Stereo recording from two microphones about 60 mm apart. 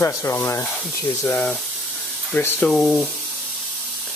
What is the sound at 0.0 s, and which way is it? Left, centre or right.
Speech, left.